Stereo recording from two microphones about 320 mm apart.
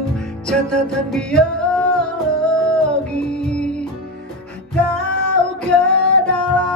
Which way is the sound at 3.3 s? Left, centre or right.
Centre.